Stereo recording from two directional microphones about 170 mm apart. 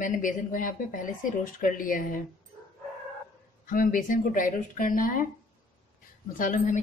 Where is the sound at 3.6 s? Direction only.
55° left (ahead or behind).